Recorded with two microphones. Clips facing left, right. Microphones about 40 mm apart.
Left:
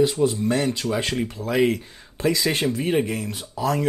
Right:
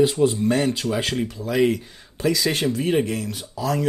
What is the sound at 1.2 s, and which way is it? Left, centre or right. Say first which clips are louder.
Speech: even; left.